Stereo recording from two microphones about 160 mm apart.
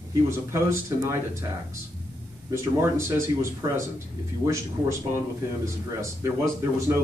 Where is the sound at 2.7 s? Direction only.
15° right (ahead or behind).